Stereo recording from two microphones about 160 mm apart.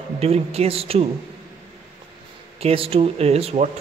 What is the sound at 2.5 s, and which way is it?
A man's voice, 40° right (ahead or behind).